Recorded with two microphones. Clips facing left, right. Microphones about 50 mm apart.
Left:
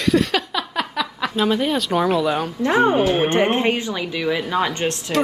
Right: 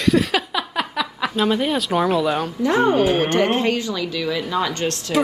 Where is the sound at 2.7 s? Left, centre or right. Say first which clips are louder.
Even; centre.